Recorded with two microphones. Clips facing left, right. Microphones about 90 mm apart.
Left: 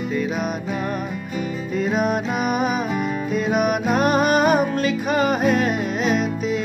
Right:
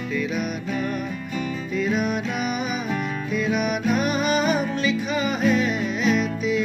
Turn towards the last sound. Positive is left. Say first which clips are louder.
# left 1 dB
turn(degrees=45)  # may be behind; listen again after turning